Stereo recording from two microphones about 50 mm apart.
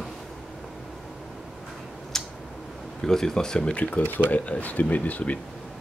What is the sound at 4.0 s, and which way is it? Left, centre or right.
Speech, left.